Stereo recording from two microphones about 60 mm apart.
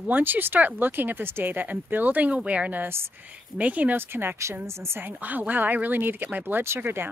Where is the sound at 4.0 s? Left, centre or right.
Right.